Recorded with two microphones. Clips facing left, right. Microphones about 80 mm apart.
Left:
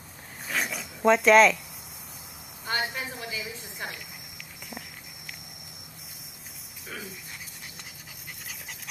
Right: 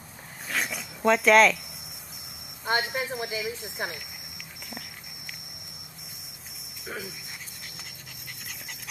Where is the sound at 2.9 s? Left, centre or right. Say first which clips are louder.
Right 5 dB; centre.